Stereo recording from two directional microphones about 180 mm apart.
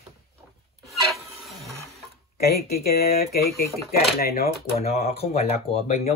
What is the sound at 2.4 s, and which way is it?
Speech, 60° left (ahead or behind).